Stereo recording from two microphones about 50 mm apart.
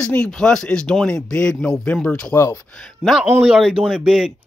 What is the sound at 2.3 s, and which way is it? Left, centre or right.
Speech, left.